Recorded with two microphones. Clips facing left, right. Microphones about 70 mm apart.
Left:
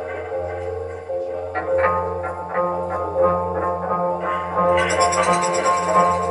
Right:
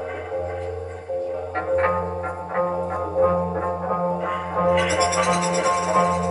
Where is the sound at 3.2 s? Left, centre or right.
Left.